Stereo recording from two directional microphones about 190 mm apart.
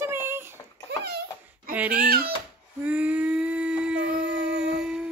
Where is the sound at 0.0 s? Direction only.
10° right (ahead or behind).